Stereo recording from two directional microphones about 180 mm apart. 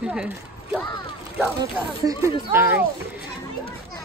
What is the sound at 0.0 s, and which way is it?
Speech, 5° right (ahead or behind).